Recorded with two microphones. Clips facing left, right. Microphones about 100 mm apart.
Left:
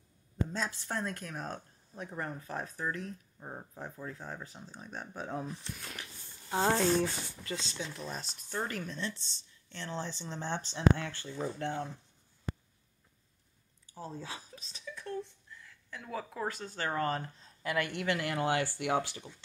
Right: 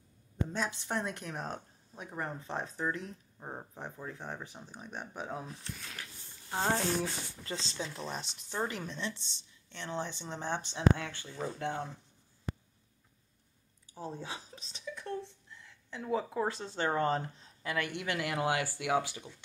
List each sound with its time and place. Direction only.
0.5 s speech: 20° right (ahead or behind)
6.6 s a sound: 5° right (ahead or behind)
7.4 s speech: 30° right (ahead or behind); by 11.2 s 15° right (ahead or behind)
13.9 s speech: 20° right (ahead or behind)